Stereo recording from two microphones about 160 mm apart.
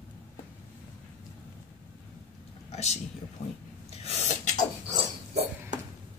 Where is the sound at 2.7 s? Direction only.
45° left (ahead or behind).